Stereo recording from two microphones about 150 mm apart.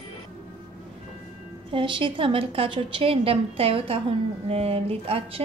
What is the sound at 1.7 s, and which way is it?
A woman's voice, 35° right (ahead or behind).